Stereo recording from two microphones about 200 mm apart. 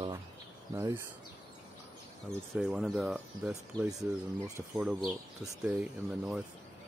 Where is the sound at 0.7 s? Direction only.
15° right (ahead or behind).